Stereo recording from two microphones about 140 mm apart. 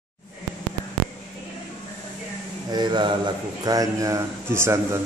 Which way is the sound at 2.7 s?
30° right (ahead or behind).